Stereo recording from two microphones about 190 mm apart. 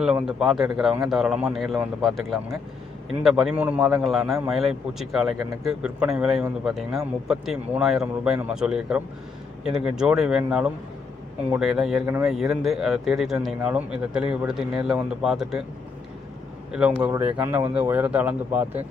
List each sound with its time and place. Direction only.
0.0 s speech: 5° right (ahead or behind)
5.4 s speech: 15° right (ahead or behind)
5.7 s speech: 5° right (ahead or behind)
16.7 s speech: 5° right (ahead or behind)